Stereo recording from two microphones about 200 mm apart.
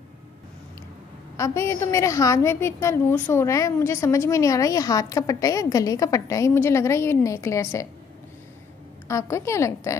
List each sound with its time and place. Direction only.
1.3 s a woman's voice: 15° left (ahead or behind)
9.0 s a woman's voice: 15° left (ahead or behind)